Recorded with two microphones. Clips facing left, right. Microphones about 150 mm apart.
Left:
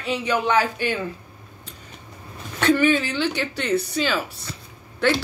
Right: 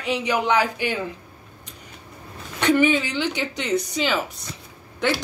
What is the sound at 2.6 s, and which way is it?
Speech, 15° right (ahead or behind).